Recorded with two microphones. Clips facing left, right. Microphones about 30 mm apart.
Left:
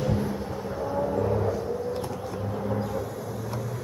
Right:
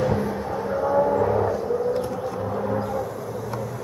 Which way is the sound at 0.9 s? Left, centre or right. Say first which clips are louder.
Right 6 dB; right.